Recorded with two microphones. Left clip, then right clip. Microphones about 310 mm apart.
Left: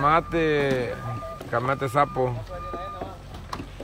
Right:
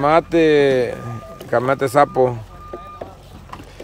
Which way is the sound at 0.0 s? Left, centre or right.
Centre.